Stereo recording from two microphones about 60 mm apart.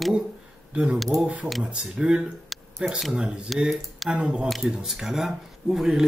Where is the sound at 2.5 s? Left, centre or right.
Centre.